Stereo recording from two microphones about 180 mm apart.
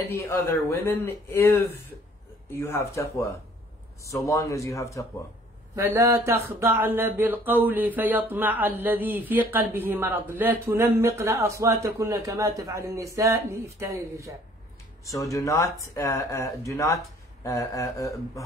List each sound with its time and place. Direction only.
0.0 s speech: 15° left (ahead or behind)
2.6 s speech: 15° left (ahead or behind)
5.8 s speech: 15° right (ahead or behind)
15.0 s speech: 15° left (ahead or behind)